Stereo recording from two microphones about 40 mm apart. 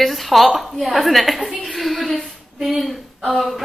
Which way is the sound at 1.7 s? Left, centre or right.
Centre.